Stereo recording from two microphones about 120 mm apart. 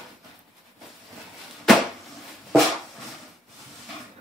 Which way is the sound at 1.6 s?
Centre (ahead or behind).